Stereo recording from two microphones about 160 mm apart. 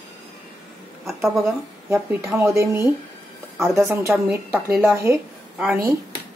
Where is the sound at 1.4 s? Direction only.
15° right (ahead or behind).